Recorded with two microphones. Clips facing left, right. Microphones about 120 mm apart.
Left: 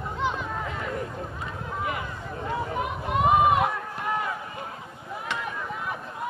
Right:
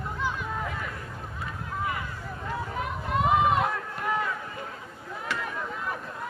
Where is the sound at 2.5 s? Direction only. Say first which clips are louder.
Left 3 dB; 15° left (ahead or behind).